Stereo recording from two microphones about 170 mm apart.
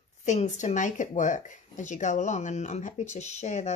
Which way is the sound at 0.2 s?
45° left (ahead or behind).